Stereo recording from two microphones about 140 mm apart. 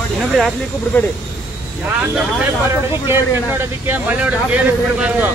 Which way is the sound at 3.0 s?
15° right (ahead or behind).